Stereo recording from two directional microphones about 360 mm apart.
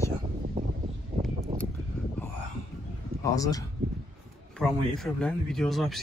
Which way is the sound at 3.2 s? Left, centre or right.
Centre.